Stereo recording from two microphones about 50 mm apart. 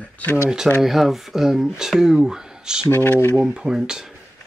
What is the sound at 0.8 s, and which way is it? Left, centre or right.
Speech, centre.